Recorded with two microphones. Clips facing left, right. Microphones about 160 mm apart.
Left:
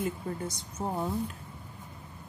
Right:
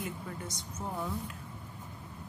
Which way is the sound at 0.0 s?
35° left (ahead or behind).